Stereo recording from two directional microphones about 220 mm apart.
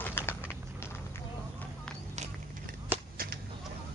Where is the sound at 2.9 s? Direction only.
40° right (ahead or behind).